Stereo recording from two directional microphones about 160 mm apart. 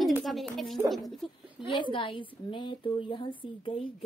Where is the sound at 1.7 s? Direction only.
30° left (ahead or behind).